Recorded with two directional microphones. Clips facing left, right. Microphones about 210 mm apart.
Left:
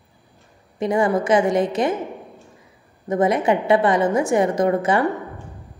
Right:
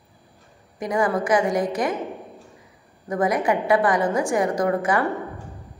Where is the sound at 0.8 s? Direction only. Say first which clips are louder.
Left 3 dB; 25° left (ahead or behind).